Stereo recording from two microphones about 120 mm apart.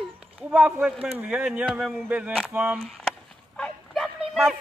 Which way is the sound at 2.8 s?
5° left (ahead or behind).